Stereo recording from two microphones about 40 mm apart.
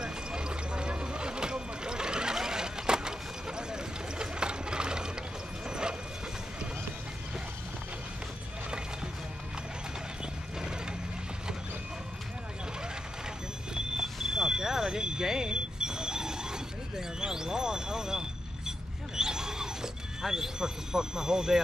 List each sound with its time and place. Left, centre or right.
0.0 s vehicle: right
5.7 s clip-clop: right
8.6 s music: right
10.6 s vehicle: centre
14.0 s smoke detector: centre
19.1 s a sound: centre